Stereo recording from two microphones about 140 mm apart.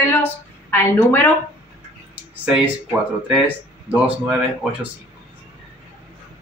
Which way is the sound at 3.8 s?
10° right (ahead or behind).